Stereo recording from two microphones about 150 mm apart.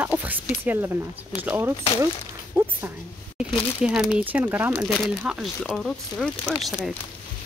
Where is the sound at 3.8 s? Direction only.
5° right (ahead or behind).